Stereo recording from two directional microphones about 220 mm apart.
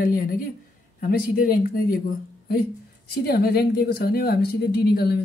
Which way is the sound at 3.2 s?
45° left (ahead or behind).